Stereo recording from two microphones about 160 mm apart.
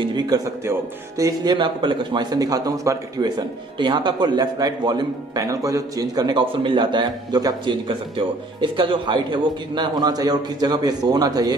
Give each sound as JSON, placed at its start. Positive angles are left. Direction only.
{"t": 0.0, "sound": "speech", "side_deg": -25}